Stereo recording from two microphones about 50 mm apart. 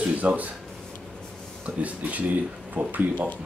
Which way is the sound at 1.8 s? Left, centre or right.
Right.